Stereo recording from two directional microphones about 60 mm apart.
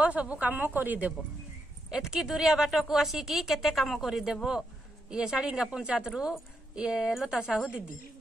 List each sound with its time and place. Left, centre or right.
0.0 s a woman's voice: right
1.9 s a woman's voice: centre